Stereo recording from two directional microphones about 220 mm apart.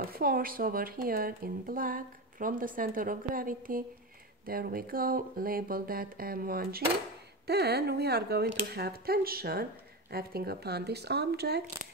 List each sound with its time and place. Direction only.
0.1 s speech: 40° right (ahead or behind)